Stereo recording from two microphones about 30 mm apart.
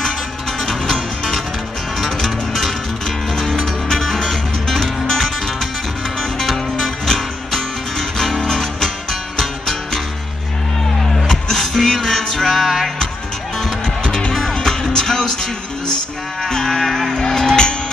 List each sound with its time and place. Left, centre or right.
0.7 s music: centre
3.9 s music: centre
6.4 s music: centre
8.5 s music: centre
11.2 s music: centre
12.5 s music: centre
14.3 s music: centre
16.4 s music: centre
17.1 s music: left